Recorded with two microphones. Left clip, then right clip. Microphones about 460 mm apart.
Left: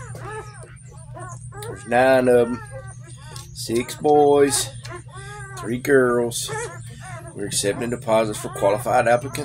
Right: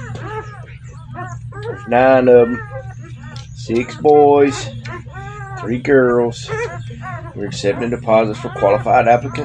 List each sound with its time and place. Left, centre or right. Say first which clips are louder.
1.9 s speech: right 6 dB; left
3.6 s speech: right 6 dB; left